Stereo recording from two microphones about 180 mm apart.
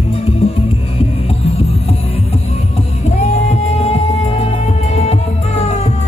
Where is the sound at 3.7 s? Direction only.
35° left (ahead or behind).